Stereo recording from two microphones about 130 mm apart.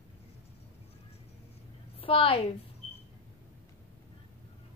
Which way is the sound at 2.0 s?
45° left (ahead or behind).